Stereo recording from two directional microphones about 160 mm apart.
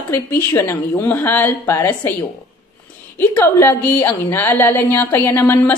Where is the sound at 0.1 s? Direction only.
15° left (ahead or behind).